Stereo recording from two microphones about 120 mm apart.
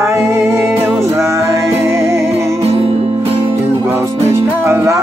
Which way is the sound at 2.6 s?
55° right (ahead or behind).